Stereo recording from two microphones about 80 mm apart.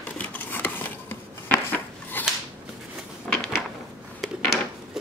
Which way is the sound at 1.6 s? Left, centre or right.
Left.